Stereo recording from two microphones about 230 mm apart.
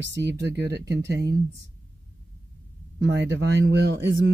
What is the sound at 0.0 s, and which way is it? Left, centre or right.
Speech, right.